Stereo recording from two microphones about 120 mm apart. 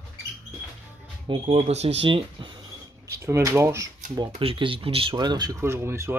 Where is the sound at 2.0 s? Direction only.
45° right (ahead or behind).